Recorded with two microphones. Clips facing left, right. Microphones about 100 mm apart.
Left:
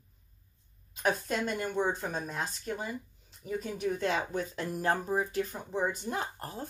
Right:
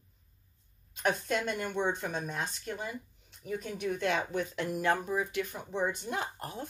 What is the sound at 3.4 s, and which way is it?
Speech, 40° left (ahead or behind).